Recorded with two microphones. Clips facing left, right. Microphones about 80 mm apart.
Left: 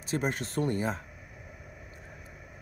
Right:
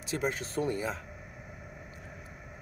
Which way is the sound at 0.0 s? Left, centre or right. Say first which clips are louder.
Left 1 dB; left.